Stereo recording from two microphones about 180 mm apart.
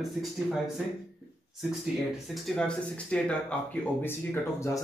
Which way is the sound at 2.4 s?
5° left (ahead or behind).